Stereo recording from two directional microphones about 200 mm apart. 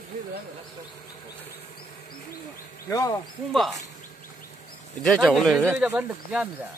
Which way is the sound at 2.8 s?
15° left (ahead or behind).